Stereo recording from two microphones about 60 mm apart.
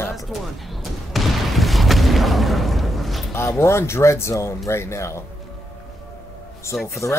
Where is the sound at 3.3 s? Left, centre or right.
Left.